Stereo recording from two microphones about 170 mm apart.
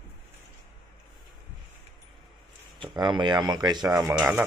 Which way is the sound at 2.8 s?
30° right (ahead or behind).